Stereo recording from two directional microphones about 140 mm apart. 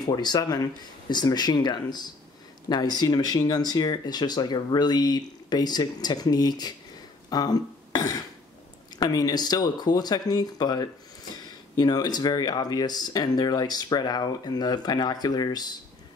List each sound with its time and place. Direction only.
0.0 s speech: 30° left (ahead or behind)
7.2 s a sound: 30° left (ahead or behind)
8.9 s speech: 30° left (ahead or behind)